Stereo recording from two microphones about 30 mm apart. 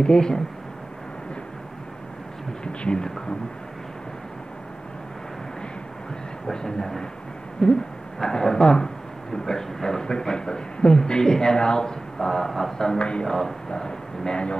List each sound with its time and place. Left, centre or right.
0.0 s speech: left
2.6 s speech: left
6.5 s speech: left